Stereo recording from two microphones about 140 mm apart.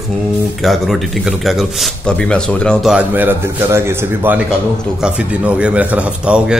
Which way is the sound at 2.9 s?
10° right (ahead or behind).